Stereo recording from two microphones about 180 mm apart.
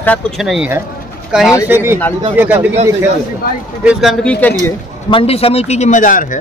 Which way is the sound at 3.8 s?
5° right (ahead or behind).